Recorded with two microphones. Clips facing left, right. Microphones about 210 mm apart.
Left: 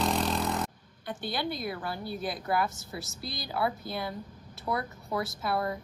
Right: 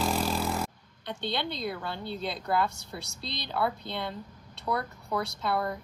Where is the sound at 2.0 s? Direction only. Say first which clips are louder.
Right 1 dB; 25° right (ahead or behind).